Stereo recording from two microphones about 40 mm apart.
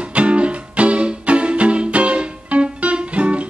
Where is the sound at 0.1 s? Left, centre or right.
Right.